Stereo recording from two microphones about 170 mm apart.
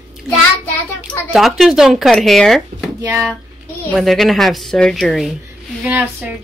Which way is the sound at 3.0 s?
20° right (ahead or behind).